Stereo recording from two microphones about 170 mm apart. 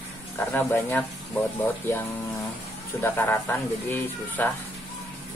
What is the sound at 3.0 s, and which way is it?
Speech, 10° left (ahead or behind).